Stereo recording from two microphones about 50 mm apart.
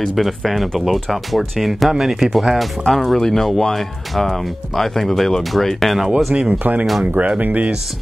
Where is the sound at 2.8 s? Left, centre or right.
Centre.